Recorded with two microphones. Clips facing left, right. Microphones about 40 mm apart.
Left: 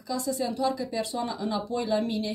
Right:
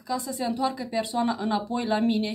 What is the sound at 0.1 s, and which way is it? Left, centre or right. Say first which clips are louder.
A woman's voice: right 1 dB; centre.